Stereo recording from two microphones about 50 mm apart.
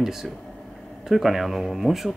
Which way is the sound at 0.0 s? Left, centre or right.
Centre.